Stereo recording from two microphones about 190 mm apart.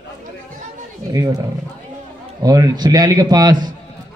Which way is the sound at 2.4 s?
20° right (ahead or behind).